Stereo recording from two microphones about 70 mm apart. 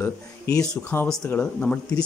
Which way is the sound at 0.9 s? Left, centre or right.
Left.